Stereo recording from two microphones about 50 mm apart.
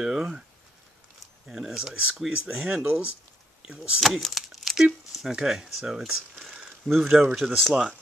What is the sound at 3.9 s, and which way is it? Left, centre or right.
Speech, centre.